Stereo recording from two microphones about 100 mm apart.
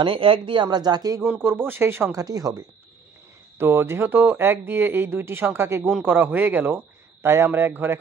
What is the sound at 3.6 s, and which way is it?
A man's voice, 25° right (ahead or behind).